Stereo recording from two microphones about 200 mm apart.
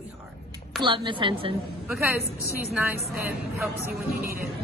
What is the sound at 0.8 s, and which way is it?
Speech, 25° right (ahead or behind).